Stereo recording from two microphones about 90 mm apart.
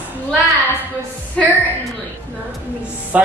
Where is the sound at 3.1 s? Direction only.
15° right (ahead or behind).